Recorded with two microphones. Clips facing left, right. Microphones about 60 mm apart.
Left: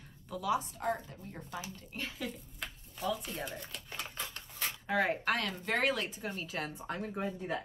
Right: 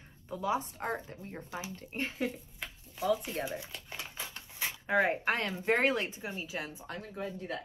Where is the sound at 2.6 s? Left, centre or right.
Centre.